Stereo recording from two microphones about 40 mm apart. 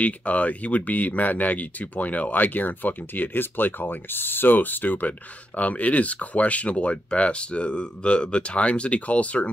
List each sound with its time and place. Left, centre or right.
0.0 s speech: left
5.6 s speech: left